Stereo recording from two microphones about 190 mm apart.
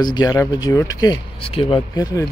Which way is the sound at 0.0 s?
20° left (ahead or behind).